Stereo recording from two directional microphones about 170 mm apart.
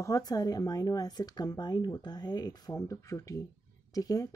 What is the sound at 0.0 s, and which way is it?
Speech, 20° left (ahead or behind).